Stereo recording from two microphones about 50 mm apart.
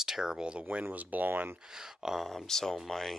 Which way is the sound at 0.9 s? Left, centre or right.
Right.